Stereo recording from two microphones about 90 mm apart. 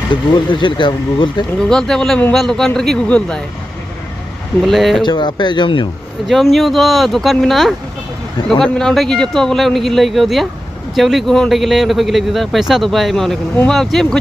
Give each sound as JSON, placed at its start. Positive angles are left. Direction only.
{"t": 0.1, "sound": "speech", "side_deg": 60}
{"t": 1.6, "sound": "speech", "side_deg": 5}
{"t": 4.6, "sound": "a man's voice", "side_deg": 0}
{"t": 5.0, "sound": "speech", "side_deg": 55}
{"t": 6.2, "sound": "a man's voice", "side_deg": 0}